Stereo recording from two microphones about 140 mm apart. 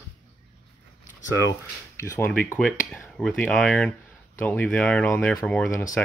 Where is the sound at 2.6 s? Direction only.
10° left (ahead or behind).